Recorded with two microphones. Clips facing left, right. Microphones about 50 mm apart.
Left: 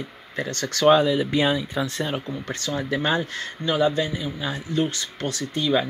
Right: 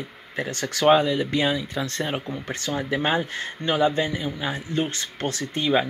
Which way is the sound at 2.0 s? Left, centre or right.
Centre.